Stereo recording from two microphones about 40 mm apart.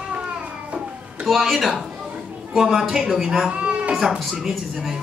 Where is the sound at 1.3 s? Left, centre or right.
Centre.